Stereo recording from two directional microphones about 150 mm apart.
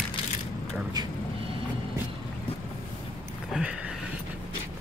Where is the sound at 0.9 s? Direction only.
30° right (ahead or behind).